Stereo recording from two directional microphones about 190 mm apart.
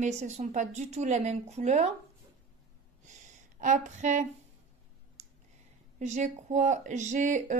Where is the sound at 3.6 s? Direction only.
40° right (ahead or behind).